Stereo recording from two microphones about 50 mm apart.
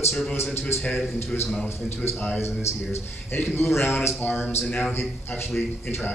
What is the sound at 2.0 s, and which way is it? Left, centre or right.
Speech, left.